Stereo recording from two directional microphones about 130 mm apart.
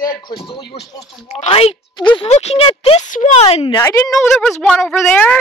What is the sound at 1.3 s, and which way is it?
Speech, 50° left (ahead or behind).